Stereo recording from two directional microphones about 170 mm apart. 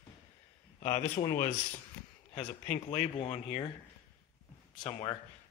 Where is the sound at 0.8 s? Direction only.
45° left (ahead or behind).